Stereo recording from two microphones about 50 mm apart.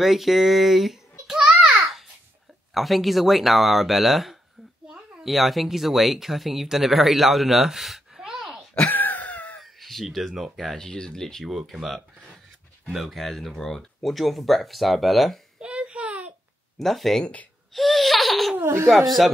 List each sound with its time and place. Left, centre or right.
0.0 s speech: centre
1.2 s a sound: centre
2.7 s speech: centre
4.8 s a sound: centre
5.2 s speech: centre
8.8 s a sound: left
9.6 s speech: centre
10.9 s speech: centre
11.4 s speech: centre
15.6 s a sound: right
16.7 s speech: centre
17.2 s speech: left
17.7 s laughter: centre
18.9 s speech: centre